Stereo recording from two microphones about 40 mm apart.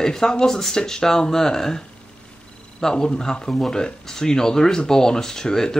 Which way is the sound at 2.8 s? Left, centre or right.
Centre.